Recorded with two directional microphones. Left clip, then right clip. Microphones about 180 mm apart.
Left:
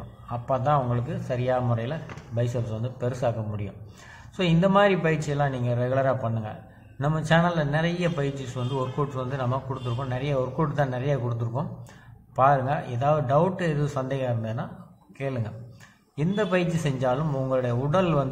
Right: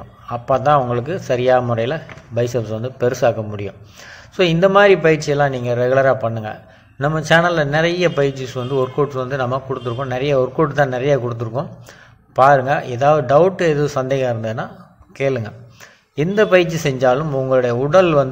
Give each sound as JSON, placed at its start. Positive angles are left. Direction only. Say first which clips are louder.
{"t": 0.3, "sound": "a man's voice", "louder": "right 10 dB", "side_deg": -30}